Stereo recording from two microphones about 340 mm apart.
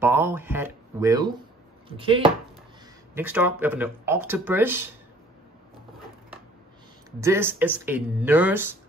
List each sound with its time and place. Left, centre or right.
0.0 s a sound: centre
1.9 s speech: centre
7.1 s speech: centre